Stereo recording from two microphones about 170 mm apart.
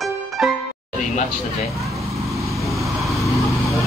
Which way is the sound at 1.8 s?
20° right (ahead or behind).